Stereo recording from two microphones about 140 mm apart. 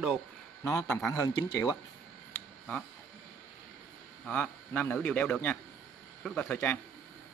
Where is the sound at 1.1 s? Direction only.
20° left (ahead or behind).